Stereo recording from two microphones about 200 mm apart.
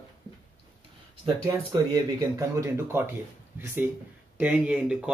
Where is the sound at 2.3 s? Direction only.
15° right (ahead or behind).